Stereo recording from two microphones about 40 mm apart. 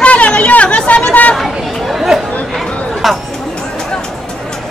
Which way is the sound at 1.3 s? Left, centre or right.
Centre.